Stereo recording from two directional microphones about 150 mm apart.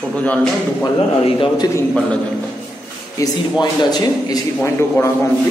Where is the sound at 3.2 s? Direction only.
25° left (ahead or behind).